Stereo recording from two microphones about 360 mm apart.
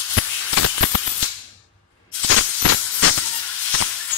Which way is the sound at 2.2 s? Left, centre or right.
Left.